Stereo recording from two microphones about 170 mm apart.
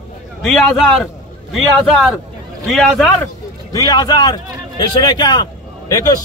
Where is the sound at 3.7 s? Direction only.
20° left (ahead or behind).